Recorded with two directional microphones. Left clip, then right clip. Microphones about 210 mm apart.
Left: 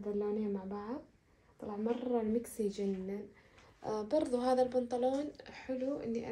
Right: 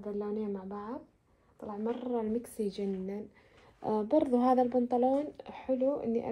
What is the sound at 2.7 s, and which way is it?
Speech, 50° right (ahead or behind).